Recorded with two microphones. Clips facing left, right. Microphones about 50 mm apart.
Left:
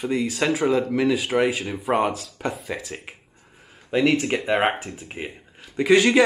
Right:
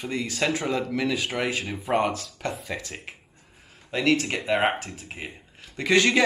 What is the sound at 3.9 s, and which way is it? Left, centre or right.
Speech, centre.